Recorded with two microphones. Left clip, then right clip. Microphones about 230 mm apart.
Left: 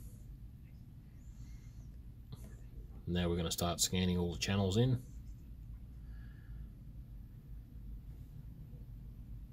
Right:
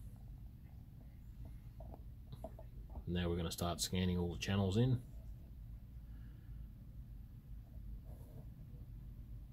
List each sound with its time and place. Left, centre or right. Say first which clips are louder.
3.1 s speech: left 4 dB; centre